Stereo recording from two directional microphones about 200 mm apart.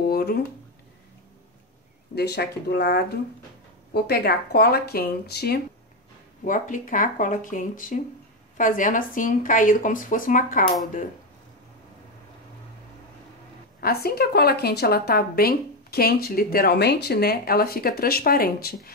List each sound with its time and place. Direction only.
0.0 s a sound: 50° left (ahead or behind)
2.1 s a woman's voice: 55° left (ahead or behind)
6.4 s speech: 40° left (ahead or behind)
13.7 s a woman's voice: 50° left (ahead or behind)